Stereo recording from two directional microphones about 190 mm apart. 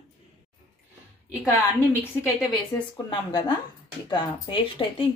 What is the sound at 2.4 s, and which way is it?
Speech, 20° left (ahead or behind).